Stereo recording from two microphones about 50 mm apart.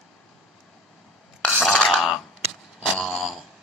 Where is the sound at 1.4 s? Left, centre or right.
Centre.